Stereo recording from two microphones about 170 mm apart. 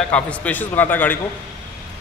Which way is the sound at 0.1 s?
10° left (ahead or behind).